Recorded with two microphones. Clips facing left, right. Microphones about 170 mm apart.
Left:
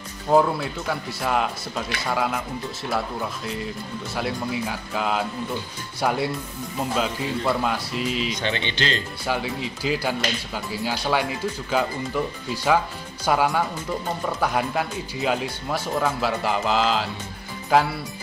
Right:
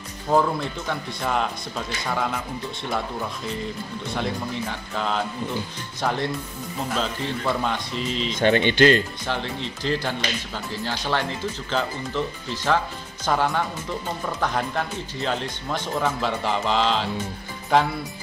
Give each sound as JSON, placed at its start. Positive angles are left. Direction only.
{"t": 0.3, "sound": "speech", "side_deg": 5}
{"t": 8.3, "sound": "speech", "side_deg": -50}
{"t": 9.2, "sound": "speech", "side_deg": 10}